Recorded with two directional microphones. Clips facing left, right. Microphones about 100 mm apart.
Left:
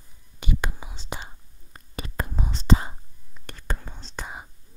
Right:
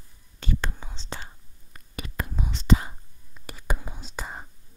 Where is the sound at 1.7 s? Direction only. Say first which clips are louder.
Left 2 dB; 35° left (ahead or behind).